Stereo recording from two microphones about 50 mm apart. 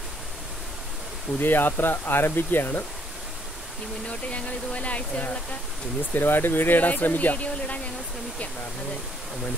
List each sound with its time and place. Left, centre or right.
1.4 s speech: left
4.1 s speech: left
6.1 s speech: left